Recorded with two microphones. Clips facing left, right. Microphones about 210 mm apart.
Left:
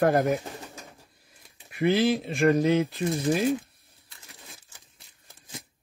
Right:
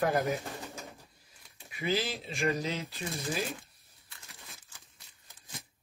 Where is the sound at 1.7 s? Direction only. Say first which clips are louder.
Left 10 dB; 60° left (ahead or behind).